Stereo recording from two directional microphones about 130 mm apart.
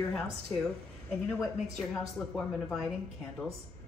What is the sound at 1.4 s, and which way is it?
Speech, 5° left (ahead or behind).